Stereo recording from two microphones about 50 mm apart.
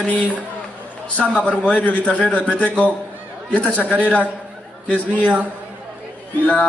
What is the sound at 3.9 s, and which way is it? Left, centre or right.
Speech, left.